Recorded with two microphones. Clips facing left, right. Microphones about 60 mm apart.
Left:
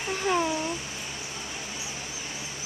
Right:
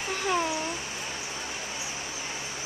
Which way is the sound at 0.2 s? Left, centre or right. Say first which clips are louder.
Left 2 dB; centre.